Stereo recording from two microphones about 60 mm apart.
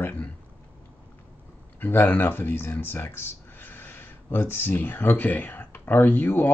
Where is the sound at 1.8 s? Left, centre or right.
Left.